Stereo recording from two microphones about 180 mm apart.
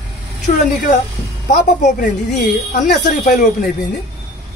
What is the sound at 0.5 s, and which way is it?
A man's voice, 45° left (ahead or behind).